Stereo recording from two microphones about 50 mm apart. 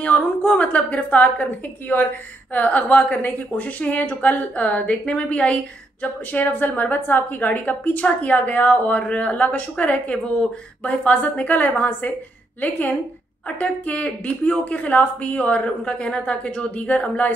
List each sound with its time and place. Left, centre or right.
0.0 s speech: left
6.3 s a woman's voice: left